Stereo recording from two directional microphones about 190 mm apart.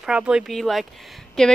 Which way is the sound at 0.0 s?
5° right (ahead or behind).